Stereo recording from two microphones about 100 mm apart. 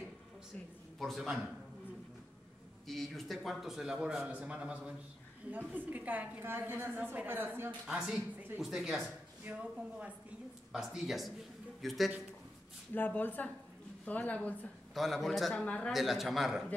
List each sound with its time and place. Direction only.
0.9 s a man's voice: centre (ahead or behind)
2.9 s a man's voice: centre (ahead or behind); by 8.0 s 20° right (ahead or behind)
8.5 s a man's voice: centre (ahead or behind)
9.4 s a man's voice: 15° right (ahead or behind); by 12.1 s centre (ahead or behind)
12.9 s speech: 20° left (ahead or behind)
15.0 s a man's voice: centre (ahead or behind)
15.6 s speech: 10° left (ahead or behind)
15.9 s a man's voice: centre (ahead or behind)